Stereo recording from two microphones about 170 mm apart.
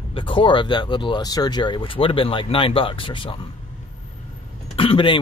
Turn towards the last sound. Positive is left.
turn(degrees=30)  # may be behind; listen again after turning